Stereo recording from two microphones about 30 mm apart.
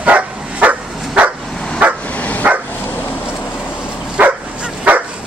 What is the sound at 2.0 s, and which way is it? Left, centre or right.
Dog, left.